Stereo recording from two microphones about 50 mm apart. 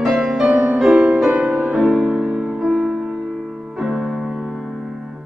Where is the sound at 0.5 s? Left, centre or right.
Right.